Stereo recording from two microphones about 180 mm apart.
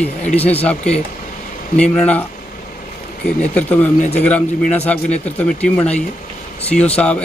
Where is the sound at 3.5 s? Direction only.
10° left (ahead or behind).